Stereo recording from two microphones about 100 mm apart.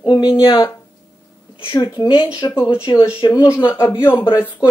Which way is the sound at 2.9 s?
60° left (ahead or behind).